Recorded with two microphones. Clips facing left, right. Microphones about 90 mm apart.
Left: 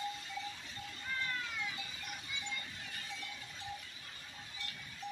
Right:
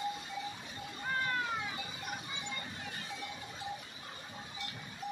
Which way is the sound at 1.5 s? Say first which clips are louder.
Right 4 dB; 40° right (ahead or behind).